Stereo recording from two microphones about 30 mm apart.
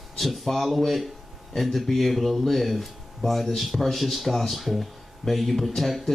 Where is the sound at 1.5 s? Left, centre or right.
Centre.